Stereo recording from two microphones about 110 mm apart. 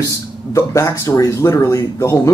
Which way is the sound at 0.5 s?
30° left (ahead or behind).